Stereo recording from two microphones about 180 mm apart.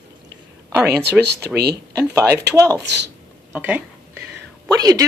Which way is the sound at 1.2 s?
65° right (ahead or behind).